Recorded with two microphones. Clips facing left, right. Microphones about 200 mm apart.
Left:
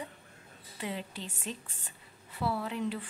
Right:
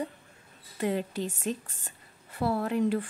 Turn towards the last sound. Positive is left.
turn(degrees=-50)  # may be behind; listen again after turning